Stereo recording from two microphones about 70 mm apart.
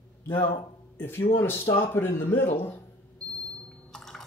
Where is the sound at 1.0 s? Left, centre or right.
Left.